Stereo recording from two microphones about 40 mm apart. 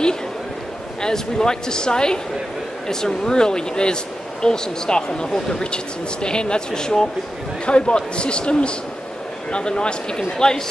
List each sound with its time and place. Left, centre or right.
1.0 s speech: centre